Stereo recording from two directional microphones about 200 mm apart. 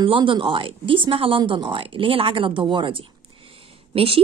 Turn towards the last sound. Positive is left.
turn(degrees=-30)  # may be behind; listen again after turning